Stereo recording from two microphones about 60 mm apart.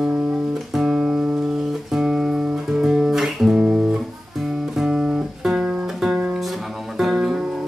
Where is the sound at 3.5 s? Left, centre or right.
Centre.